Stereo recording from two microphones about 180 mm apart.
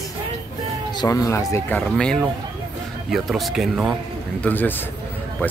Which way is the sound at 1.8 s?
Centre (ahead or behind).